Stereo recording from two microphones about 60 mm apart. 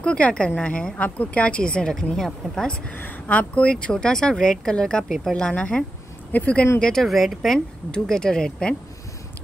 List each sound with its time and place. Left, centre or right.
0.0 s speech: centre
2.9 s speech: left
6.8 s speech: centre
7.5 s speech: centre